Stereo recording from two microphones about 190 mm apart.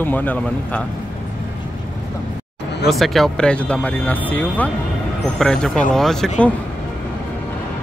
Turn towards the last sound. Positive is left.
turn(degrees=0)  # may be behind; listen again after turning